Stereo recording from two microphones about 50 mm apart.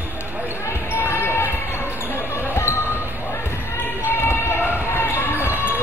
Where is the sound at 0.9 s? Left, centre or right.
Left.